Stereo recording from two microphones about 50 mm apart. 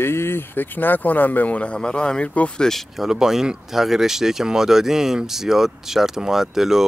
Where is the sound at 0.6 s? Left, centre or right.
Left.